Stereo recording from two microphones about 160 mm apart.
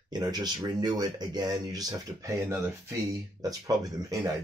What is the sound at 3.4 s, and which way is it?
Speech, 25° right (ahead or behind).